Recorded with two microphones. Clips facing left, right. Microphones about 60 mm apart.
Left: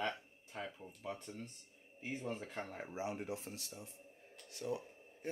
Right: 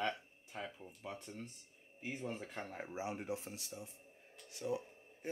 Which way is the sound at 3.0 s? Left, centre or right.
Centre.